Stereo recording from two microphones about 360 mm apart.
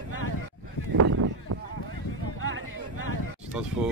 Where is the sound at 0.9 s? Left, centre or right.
Right.